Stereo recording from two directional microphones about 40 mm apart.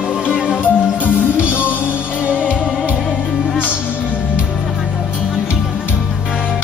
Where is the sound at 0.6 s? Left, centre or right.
Right.